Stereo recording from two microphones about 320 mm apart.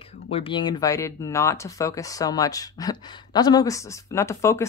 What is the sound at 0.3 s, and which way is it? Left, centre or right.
Speech, centre.